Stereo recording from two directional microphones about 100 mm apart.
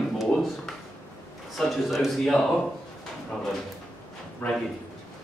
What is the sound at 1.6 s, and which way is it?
Speech, centre (ahead or behind).